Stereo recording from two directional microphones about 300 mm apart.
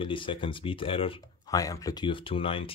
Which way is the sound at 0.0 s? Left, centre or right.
Centre.